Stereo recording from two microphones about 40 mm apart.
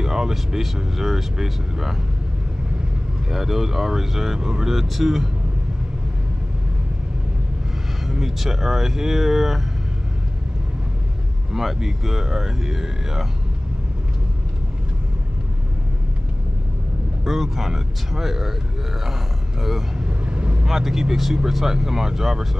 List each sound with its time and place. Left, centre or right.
0.0 s speech: centre
3.3 s speech: centre
4.7 s speech: centre
8.1 s speech: centre
11.5 s speech: centre
17.2 s speech: centre
20.1 s vehicle: right
20.6 s speech: centre